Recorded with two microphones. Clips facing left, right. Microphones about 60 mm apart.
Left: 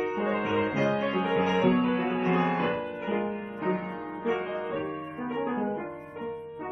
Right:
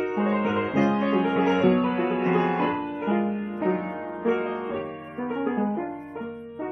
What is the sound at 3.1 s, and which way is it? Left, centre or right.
Music, centre.